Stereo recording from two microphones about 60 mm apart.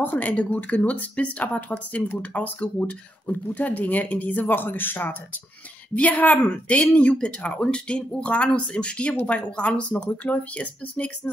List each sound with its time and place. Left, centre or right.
0.0 s speech: left